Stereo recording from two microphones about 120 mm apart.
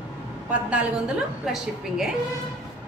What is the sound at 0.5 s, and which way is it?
A woman's voice, 10° right (ahead or behind).